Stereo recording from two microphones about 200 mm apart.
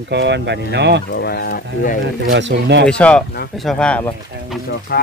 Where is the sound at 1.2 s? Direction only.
55° left (ahead or behind).